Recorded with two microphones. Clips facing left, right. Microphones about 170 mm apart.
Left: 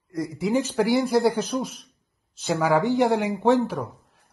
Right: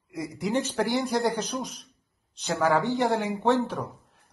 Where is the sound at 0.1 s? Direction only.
Centre (ahead or behind).